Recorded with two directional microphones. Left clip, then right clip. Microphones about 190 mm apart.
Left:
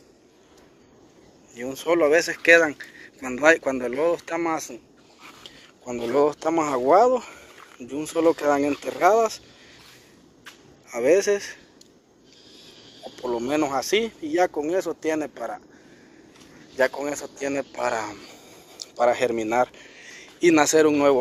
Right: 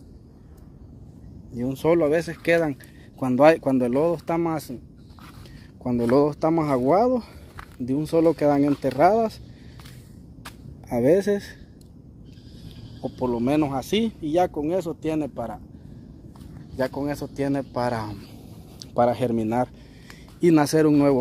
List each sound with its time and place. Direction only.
1.6 s speech: 15° right (ahead or behind)
6.1 s speech: 15° right (ahead or behind)
10.9 s speech: 15° right (ahead or behind)
13.1 s speech: 10° right (ahead or behind)
16.7 s speech: 5° right (ahead or behind); by 21.2 s 20° right (ahead or behind)